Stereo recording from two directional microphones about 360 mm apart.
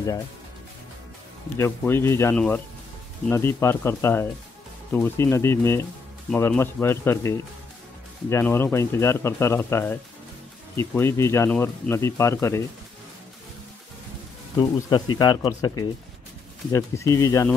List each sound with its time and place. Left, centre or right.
1.6 s speech: centre
14.6 s speech: centre
16.7 s speech: centre